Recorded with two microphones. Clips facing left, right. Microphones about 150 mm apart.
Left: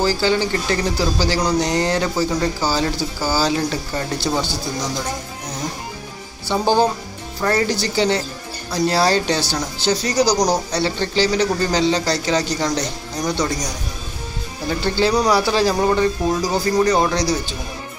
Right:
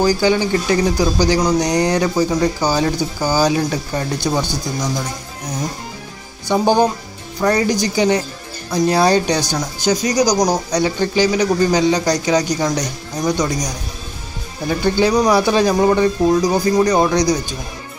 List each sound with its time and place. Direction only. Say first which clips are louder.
0.0 s speech: right 3 dB; 15° right (ahead or behind)
6.4 s speech: right 2 dB; 15° right (ahead or behind)
14.7 s speech: right 3 dB; 15° right (ahead or behind)